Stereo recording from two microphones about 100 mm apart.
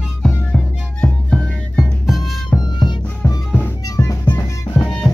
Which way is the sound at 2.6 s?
45° left (ahead or behind).